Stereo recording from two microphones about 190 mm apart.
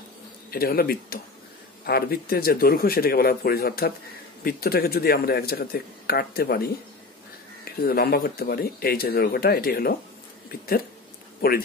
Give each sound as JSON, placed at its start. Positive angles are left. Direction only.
{"t": 0.5, "sound": "speech", "side_deg": 55}